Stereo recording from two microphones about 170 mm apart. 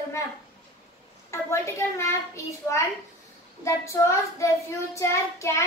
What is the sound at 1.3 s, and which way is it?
A child's voice, 15° left (ahead or behind).